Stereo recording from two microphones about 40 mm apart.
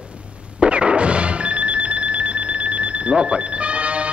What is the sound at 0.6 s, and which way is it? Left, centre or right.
Alarm clock, right.